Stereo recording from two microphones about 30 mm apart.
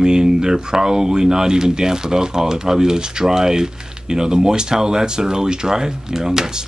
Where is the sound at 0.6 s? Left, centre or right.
Right.